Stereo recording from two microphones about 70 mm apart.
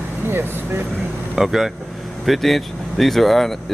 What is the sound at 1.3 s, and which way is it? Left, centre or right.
Speech, centre.